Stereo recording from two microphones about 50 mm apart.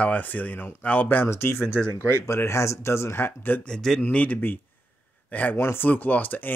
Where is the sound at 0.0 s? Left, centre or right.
Left.